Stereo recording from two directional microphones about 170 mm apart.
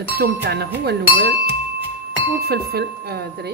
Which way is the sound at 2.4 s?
70° right (ahead or behind).